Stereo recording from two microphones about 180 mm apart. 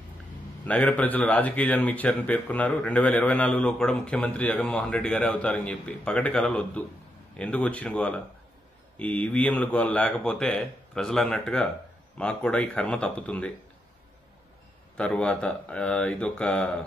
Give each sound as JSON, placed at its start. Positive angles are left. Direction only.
{"t": 0.7, "sound": "a man's voice", "side_deg": 5}
{"t": 15.0, "sound": "a man's voice", "side_deg": 5}